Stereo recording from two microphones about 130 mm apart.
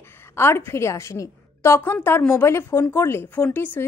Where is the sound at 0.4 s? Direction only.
20° left (ahead or behind).